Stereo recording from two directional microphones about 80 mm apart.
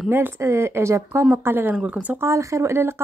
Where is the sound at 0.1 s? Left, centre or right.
Right.